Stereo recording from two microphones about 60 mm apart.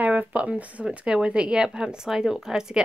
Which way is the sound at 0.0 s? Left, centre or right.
Right.